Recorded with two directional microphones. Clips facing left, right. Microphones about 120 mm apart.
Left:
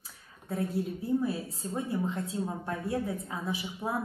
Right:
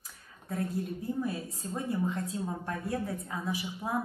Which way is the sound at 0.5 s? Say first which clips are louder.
Left 2 dB; 25° left (ahead or behind).